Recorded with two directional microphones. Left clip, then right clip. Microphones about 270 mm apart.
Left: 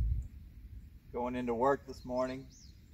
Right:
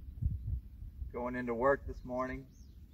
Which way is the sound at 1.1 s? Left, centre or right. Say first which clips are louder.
Left 2 dB; centre.